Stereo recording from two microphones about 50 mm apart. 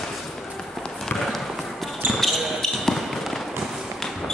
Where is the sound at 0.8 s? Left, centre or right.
Centre.